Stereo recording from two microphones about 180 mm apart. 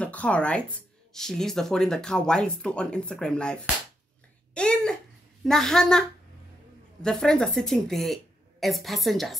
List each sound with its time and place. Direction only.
0.0 s speech: 5° left (ahead or behind)
4.6 s speech: 5° left (ahead or behind)